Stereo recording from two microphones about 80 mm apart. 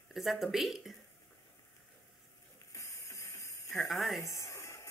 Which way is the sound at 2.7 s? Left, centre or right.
Left.